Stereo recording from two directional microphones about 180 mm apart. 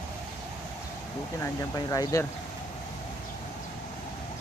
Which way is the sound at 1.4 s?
20° left (ahead or behind).